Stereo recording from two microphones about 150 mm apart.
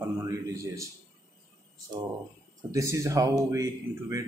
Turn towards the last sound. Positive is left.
turn(degrees=-20)  # may be behind; listen again after turning